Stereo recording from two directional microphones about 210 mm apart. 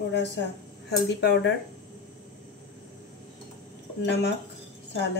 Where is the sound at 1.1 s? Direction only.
50° left (ahead or behind).